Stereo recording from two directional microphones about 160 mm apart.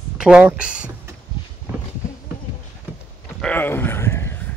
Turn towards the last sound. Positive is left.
turn(degrees=15)  # may be behind; listen again after turning